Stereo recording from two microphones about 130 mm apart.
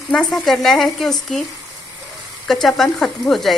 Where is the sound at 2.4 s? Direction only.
Centre (ahead or behind).